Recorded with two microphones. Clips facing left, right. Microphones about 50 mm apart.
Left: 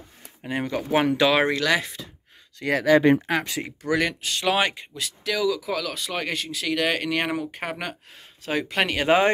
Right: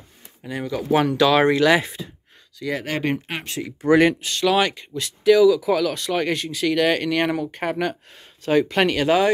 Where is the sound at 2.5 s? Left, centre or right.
Left.